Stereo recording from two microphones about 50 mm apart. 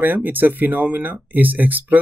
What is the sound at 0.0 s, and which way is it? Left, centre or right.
Speech, right.